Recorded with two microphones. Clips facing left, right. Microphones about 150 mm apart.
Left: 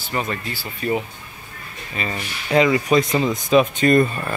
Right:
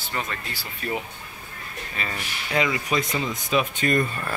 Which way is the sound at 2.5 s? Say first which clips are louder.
Left 8 dB; 35° left (ahead or behind).